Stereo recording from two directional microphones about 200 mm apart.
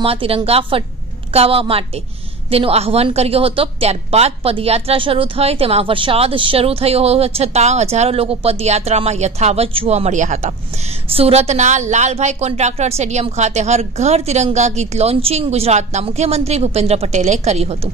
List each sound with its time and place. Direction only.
0.0 s a woman's voice: 30° right (ahead or behind)